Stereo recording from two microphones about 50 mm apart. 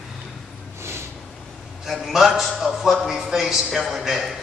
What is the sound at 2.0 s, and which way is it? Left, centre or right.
A man's voice, centre.